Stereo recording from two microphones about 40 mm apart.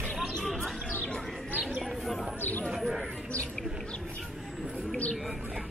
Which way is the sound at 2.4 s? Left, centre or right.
Left.